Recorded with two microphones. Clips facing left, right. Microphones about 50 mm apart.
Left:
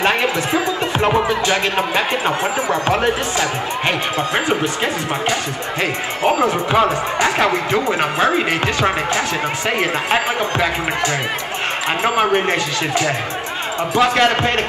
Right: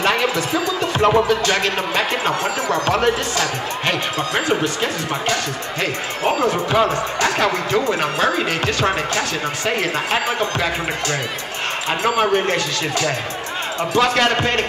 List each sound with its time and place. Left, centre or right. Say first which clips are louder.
0.0 s speech: left 1 dB; left
6.2 s speech: left 2 dB; left
12.0 s speech: left 1 dB; left